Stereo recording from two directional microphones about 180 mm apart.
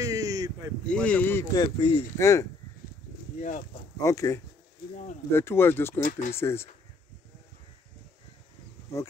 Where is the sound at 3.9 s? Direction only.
15° left (ahead or behind).